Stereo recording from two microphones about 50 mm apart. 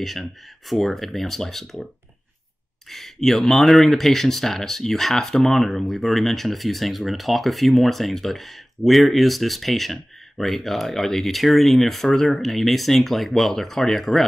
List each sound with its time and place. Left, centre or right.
0.7 s speech: centre
2.9 s speech: centre